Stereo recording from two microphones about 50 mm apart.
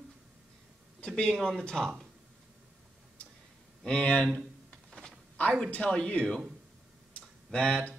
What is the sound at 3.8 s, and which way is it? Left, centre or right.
Speech, centre.